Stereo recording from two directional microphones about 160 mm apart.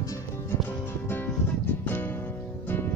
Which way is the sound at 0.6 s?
15° left (ahead or behind).